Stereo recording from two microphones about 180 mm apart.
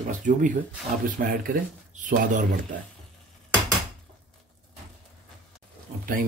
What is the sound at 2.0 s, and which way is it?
Speech, 45° right (ahead or behind).